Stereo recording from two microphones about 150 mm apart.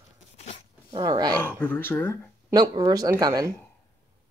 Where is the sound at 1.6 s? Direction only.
15° left (ahead or behind).